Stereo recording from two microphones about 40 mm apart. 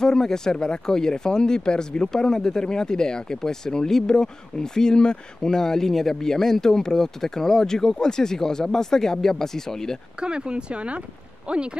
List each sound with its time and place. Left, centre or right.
0.0 s speech: centre
10.2 s speech: right